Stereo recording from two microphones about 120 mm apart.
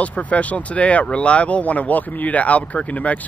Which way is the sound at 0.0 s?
10° left (ahead or behind).